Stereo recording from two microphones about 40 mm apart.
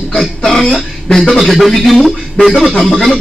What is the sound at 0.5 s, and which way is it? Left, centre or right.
A man's voice, centre.